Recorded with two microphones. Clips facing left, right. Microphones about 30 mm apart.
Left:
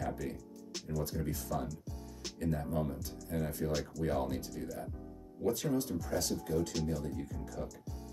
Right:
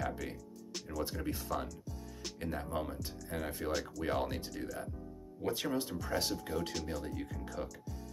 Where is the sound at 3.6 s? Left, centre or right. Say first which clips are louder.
Right 1 dB; right.